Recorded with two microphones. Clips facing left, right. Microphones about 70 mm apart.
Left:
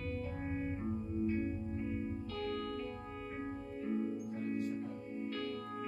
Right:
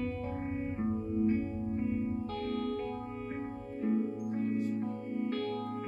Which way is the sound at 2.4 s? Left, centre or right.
Right.